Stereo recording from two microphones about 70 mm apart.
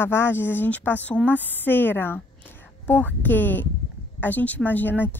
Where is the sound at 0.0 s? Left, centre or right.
Left.